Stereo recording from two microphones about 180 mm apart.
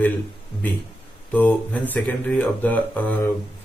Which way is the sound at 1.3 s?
10° left (ahead or behind).